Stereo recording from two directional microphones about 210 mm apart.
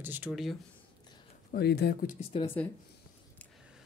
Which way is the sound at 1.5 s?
50° left (ahead or behind).